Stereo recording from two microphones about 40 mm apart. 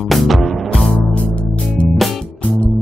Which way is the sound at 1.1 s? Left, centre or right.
Left.